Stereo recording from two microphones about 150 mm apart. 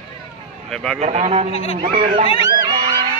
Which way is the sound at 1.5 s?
40° left (ahead or behind).